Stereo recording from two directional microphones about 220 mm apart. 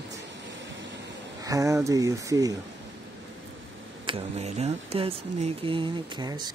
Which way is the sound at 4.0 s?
25° right (ahead or behind).